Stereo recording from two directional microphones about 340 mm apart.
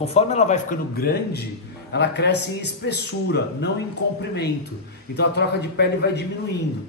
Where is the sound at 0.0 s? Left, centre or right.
Centre.